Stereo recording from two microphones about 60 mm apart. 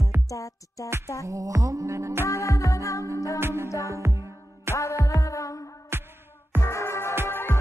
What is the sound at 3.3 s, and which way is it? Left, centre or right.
Music, right.